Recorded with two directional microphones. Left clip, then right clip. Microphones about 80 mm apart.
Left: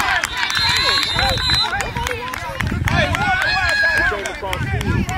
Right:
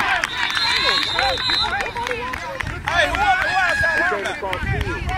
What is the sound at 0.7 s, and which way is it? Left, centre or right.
Run, left.